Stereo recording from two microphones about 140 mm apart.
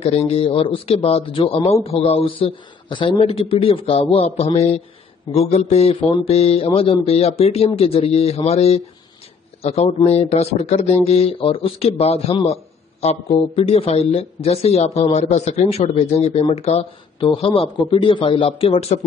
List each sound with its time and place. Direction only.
0.0 s speech: 45° left (ahead or behind)